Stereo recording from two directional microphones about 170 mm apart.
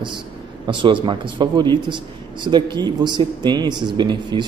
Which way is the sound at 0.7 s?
30° right (ahead or behind).